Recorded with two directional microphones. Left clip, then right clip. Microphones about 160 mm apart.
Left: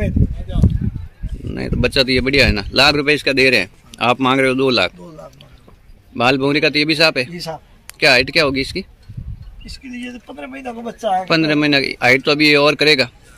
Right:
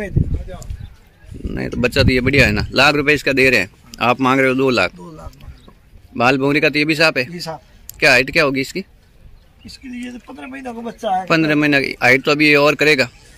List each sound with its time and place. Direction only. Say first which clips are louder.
1.4 s speech: even; 5° right (ahead or behind)
4.9 s a sound: left 1 dB; 20° left (ahead or behind)
6.1 s speech: even; 5° right (ahead or behind)
7.3 s speech: left 1 dB; 15° left (ahead or behind)
8.0 s speech: even; 5° right (ahead or behind)
10.1 s speech: left 1 dB; 10° left (ahead or behind)
10.7 s speech: left 1 dB; 15° left (ahead or behind)
11.2 s speech: right 2 dB; 5° right (ahead or behind)